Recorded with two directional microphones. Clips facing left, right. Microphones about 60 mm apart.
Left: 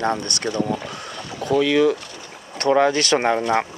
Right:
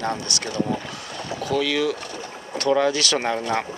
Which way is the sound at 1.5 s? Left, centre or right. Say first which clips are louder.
Left 6 dB; left.